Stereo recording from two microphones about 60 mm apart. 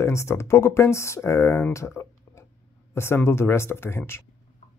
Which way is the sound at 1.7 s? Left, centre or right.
Left.